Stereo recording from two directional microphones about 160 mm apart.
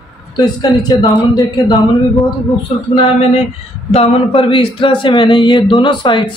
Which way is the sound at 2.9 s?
35° left (ahead or behind).